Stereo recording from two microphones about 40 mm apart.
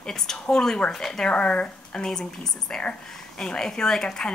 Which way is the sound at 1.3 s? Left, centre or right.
Left.